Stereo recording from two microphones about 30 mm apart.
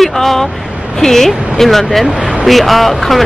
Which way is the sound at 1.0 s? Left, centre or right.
Centre.